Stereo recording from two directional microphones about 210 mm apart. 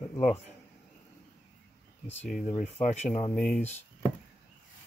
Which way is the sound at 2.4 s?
35° left (ahead or behind).